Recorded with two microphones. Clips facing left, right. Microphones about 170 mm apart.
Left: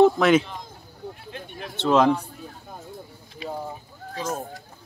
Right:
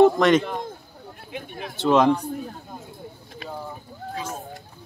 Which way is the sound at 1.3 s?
Centre (ahead or behind).